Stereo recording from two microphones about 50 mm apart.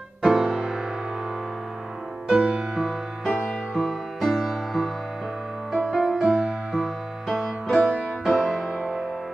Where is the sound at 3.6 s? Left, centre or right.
Centre.